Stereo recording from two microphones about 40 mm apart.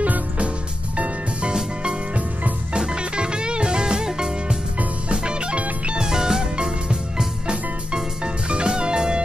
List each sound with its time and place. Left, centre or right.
0.0 s music: right
6.0 s music: centre